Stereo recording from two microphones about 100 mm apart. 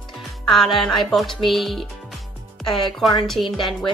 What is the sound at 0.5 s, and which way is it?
Speech, centre (ahead or behind).